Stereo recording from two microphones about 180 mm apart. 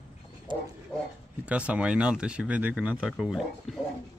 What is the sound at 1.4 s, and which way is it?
Speech, 10° right (ahead or behind).